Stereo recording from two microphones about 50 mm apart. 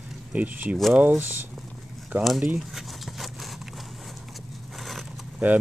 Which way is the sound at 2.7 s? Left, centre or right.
Centre.